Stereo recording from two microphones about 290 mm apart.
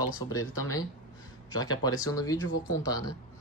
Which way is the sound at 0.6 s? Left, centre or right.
Centre.